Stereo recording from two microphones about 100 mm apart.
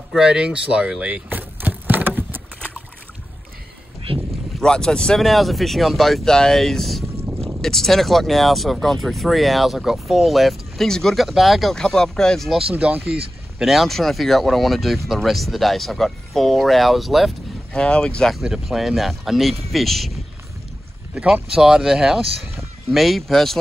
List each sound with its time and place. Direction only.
0.1 s a sound: 5° right (ahead or behind)
4.1 s a sound: 70° right (ahead or behind)
4.6 s speech: 5° left (ahead or behind)
12.7 s speech: 15° right (ahead or behind)
13.6 s speech: centre (ahead or behind)
21.1 s speech: 10° right (ahead or behind)